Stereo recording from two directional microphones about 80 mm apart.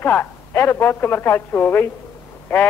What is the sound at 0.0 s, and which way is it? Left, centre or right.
Speech, left.